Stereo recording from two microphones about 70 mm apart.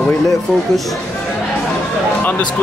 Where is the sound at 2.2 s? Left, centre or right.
Left.